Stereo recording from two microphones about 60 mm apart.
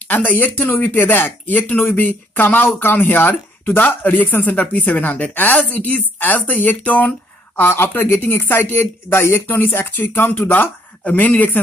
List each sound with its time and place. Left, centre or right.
0.1 s speech: left
7.6 s speech: left